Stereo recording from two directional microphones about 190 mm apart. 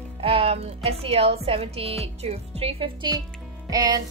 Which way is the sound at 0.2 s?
30° right (ahead or behind).